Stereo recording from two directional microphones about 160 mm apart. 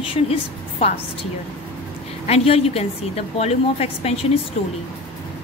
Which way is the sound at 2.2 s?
40° left (ahead or behind).